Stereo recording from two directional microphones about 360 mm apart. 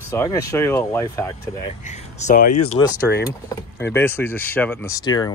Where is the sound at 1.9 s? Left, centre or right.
Centre.